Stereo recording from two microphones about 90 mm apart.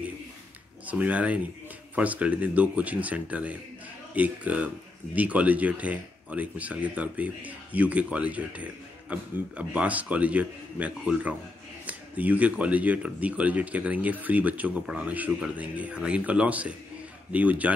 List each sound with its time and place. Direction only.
0.8 s speech: 15° right (ahead or behind)